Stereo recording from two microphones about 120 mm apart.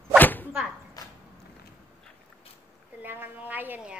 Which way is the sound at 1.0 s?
30° left (ahead or behind).